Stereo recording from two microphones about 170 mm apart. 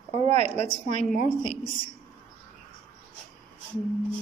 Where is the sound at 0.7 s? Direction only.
45° left (ahead or behind).